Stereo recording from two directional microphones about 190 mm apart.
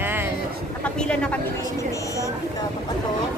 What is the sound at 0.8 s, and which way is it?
Speech, 5° left (ahead or behind).